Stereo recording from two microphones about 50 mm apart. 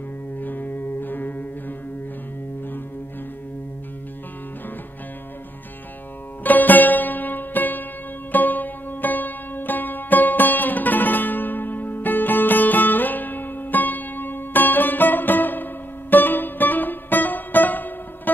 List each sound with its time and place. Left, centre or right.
0.4 s music: left
6.4 s music: left